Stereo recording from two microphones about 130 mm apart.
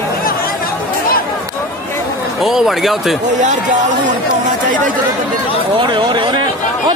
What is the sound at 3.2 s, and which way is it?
Speech, 70° right (ahead or behind).